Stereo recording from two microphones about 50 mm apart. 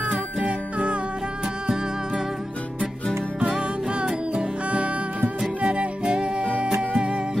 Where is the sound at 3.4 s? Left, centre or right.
Right.